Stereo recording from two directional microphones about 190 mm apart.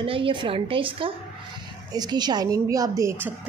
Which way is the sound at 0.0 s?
25° right (ahead or behind).